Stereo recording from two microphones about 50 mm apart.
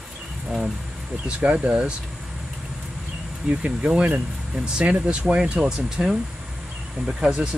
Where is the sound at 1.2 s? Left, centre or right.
Right.